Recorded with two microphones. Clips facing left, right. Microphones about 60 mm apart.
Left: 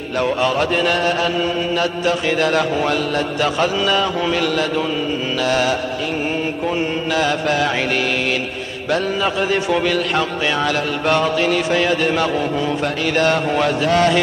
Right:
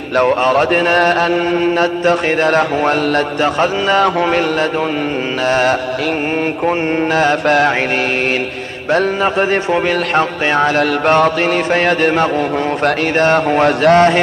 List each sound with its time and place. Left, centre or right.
0.1 s mantra: right
3.3 s a man's voice: right
4.0 s mantra: right
5.4 s a man's voice: right
8.9 s a man's voice: right
11.1 s mantra: right
13.0 s a man's voice: right